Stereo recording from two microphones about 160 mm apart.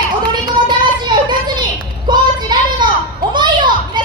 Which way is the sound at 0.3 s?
25° right (ahead or behind).